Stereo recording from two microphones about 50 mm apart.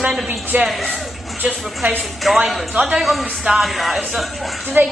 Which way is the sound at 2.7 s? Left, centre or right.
Right.